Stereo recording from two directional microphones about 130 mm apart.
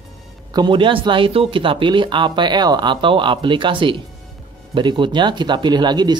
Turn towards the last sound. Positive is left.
turn(degrees=-35)  # may be behind; listen again after turning